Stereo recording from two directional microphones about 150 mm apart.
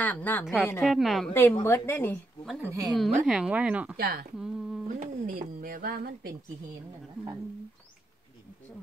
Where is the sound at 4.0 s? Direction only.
90° right.